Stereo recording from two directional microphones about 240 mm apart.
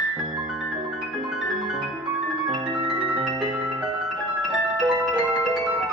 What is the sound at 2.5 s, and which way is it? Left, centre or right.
Music, centre.